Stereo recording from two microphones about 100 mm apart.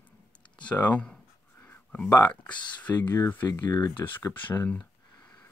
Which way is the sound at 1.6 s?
20° left (ahead or behind).